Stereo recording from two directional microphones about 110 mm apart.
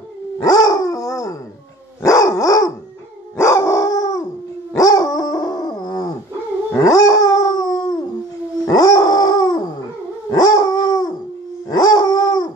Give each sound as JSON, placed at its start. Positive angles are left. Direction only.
{"t": 0.4, "sound": "dog", "side_deg": 35}